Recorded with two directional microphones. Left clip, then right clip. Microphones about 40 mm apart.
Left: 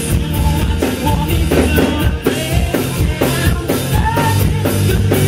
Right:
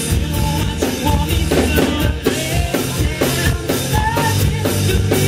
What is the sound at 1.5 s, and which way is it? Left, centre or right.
Music, centre.